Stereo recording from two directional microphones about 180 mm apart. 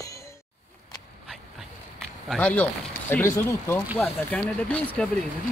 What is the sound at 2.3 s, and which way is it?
Speech, 10° left (ahead or behind).